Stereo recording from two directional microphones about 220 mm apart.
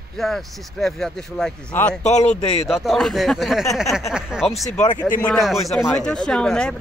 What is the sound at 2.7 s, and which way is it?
Speech, centre (ahead or behind).